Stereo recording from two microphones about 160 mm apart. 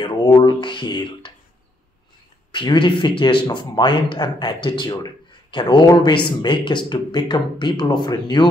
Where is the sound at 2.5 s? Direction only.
30° left (ahead or behind).